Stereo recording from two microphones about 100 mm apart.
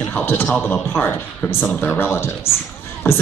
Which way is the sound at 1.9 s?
25° left (ahead or behind).